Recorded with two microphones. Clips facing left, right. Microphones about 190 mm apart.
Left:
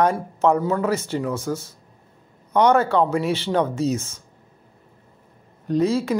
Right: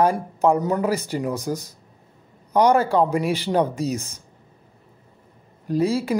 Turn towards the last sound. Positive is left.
turn(degrees=-10)  # may be behind; listen again after turning